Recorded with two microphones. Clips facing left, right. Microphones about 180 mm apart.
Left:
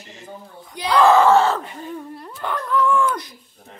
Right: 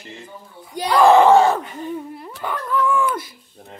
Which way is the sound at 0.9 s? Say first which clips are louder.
Right 2 dB; 15° right (ahead or behind).